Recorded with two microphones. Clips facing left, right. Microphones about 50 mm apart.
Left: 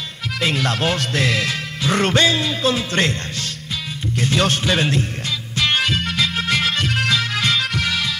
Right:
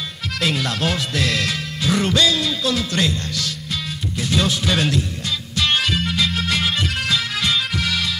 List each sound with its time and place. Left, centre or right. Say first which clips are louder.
0.4 s a man's voice: left 2 dB; centre
1.1 s music: left 2 dB; left
1.9 s music: left 1 dB; left
2.2 s speech: left 2 dB; left
4.2 s music: left 2 dB; left
4.6 s a man's voice: left 1 dB; left
5.8 s music: left 1 dB; centre